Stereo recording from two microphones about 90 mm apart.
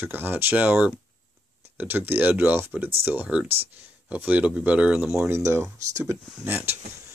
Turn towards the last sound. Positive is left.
turn(degrees=-20)  # may be behind; listen again after turning